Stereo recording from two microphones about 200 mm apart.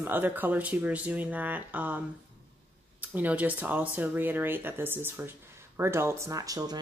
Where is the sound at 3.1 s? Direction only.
10° right (ahead or behind).